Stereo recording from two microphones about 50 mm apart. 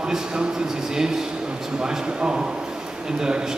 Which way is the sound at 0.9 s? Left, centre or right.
Centre.